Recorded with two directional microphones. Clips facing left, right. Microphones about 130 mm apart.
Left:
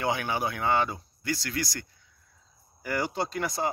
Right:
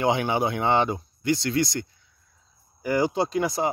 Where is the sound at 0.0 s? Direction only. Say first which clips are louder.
Right 6 dB; 25° right (ahead or behind).